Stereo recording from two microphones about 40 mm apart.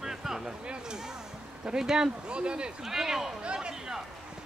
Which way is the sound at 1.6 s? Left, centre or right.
Centre.